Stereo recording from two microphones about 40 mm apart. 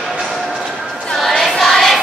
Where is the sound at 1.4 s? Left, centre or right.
Centre.